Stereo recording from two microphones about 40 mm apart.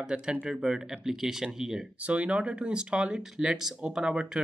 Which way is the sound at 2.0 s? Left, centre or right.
Right.